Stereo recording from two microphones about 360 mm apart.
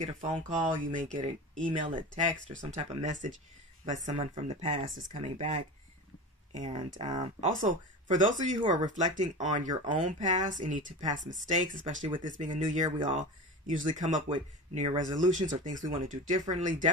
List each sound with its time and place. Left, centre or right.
0.0 s speech: centre